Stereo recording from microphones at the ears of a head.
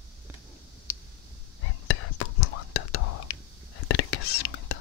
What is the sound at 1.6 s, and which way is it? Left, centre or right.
Whispering, left.